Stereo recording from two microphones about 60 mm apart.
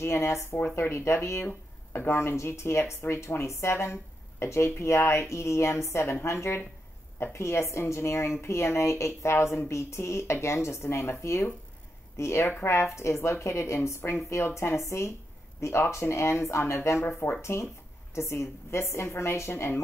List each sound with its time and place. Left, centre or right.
0.0 s speech: left